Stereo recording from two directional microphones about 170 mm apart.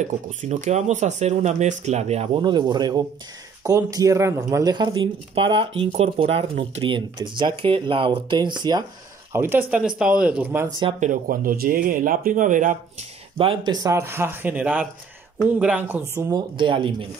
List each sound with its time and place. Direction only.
0.4 s speech: 45° right (ahead or behind); by 8.8 s 25° right (ahead or behind)
9.3 s speech: 15° right (ahead or behind)
11.0 s speech: 50° right (ahead or behind)
13.4 s speech: 30° right (ahead or behind); by 16.3 s 10° right (ahead or behind)
16.3 s speech: 25° right (ahead or behind)